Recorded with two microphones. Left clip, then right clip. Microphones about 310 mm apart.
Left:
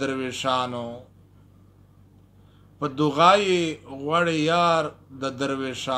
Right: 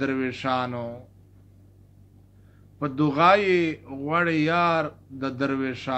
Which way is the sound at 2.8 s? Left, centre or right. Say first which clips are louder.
Left 2 dB; left.